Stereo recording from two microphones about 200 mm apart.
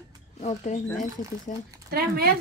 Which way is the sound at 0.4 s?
35° left (ahead or behind).